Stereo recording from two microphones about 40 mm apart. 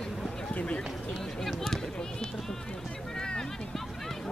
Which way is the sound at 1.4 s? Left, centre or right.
Centre.